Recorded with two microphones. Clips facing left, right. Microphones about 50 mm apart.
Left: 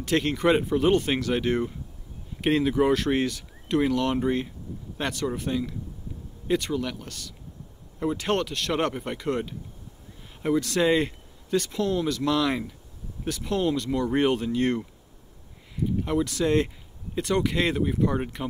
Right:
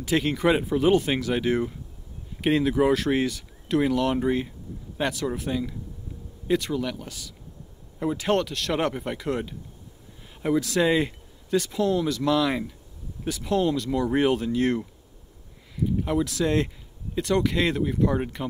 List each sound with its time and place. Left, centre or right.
0.0 s speech: centre